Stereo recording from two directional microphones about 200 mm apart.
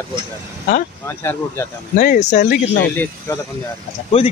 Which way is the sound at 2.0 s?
40° left (ahead or behind).